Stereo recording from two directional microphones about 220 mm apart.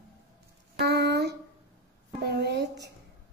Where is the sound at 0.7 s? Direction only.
50° right (ahead or behind).